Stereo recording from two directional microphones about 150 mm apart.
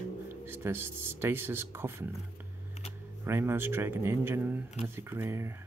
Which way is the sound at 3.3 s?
15° right (ahead or behind).